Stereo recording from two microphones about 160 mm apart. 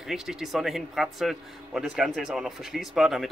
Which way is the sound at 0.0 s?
5° right (ahead or behind).